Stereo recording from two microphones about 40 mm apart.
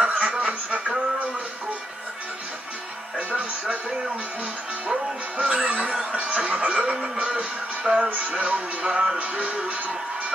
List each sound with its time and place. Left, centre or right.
0.0 s a sound: right
3.2 s music: right
5.4 s music: right
8.1 s speech: right